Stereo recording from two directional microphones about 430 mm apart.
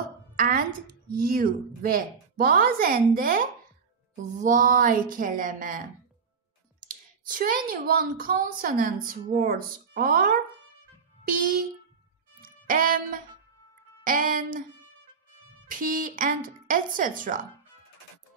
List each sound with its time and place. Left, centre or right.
0.4 s speech: centre
6.9 s speech: centre
12.4 s music: centre
14.0 s speech: centre
15.7 s speech: centre